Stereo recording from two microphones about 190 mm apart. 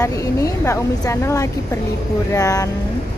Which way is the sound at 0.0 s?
15° left (ahead or behind).